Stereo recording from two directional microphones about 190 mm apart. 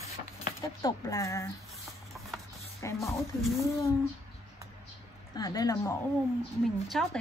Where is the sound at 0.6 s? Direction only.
20° left (ahead or behind).